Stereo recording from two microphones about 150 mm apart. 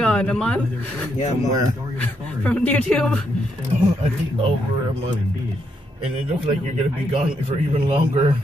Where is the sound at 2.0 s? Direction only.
10° left (ahead or behind).